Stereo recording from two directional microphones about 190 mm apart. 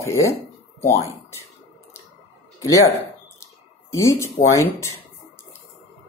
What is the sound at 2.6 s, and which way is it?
Speech, 15° left (ahead or behind).